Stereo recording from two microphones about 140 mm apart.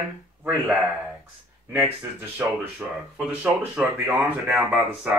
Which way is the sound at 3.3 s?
10° right (ahead or behind).